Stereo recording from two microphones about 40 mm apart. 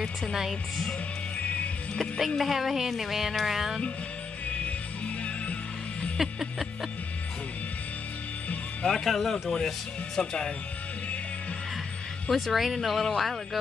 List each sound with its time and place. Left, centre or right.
0.3 s speech: centre
2.1 s speech: centre
4.6 s music: left
6.1 s speech: centre
9.0 s speech: centre
12.3 s speech: centre